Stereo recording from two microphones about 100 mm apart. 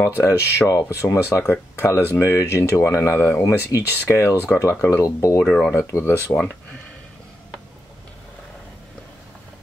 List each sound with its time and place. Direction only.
0.1 s speech: 25° left (ahead or behind)
5.4 s speech: 5° left (ahead or behind)
5.7 s speech: 25° left (ahead or behind)